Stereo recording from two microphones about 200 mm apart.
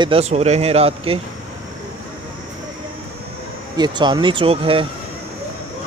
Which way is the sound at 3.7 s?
20° right (ahead or behind).